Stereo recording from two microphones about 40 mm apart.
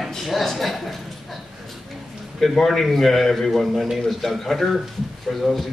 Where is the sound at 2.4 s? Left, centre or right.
Centre.